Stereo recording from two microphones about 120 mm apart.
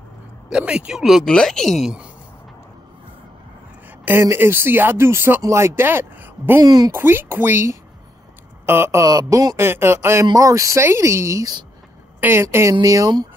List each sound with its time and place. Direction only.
0.5 s speech: 5° right (ahead or behind)
4.0 s speech: 20° right (ahead or behind)
6.6 s speech: 30° right (ahead or behind)
6.9 s speech: 20° right (ahead or behind)